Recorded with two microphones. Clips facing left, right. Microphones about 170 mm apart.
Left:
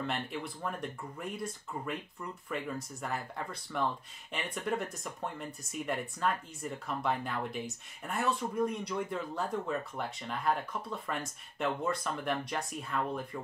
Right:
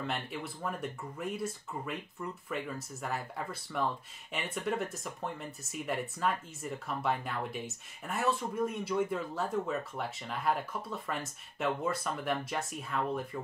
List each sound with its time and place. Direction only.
0.0 s speech: centre (ahead or behind)